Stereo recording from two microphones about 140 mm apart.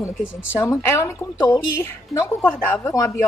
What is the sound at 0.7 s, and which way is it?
A woman's voice, 20° left (ahead or behind).